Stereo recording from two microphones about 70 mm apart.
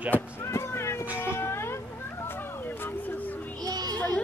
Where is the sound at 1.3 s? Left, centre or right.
Left.